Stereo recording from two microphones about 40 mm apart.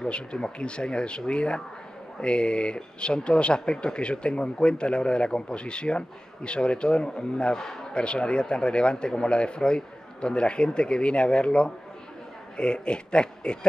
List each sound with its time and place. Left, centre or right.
0.1 s speech: left
7.5 s speech: centre
7.9 s speech: left